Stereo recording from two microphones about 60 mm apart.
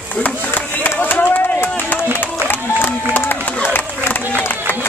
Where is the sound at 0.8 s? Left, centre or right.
Left.